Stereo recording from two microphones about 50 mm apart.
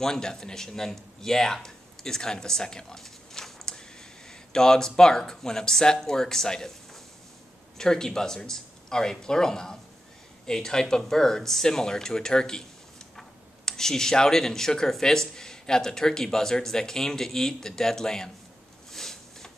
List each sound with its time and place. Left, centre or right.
0.0 s speech: centre
7.7 s speech: centre
13.7 s speech: centre
18.9 s a sound: centre